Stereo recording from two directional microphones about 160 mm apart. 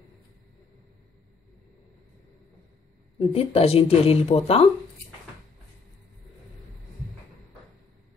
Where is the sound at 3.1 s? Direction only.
40° left (ahead or behind).